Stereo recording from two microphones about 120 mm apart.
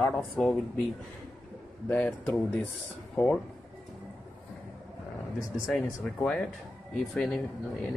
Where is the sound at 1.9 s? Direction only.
15° left (ahead or behind).